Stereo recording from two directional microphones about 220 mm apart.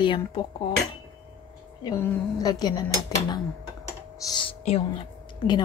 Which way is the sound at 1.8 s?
15° left (ahead or behind).